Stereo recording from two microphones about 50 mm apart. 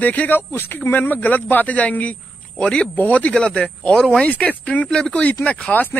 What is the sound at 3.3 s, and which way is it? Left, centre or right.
Speech, centre.